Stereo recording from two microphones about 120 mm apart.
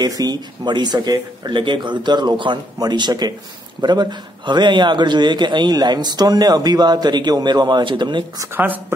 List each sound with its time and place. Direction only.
0.0 s a man's voice: 35° right (ahead or behind)
8.5 s speech: 15° right (ahead or behind)